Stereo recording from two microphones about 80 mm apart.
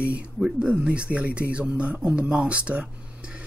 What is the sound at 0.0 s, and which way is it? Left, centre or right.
Speech, centre.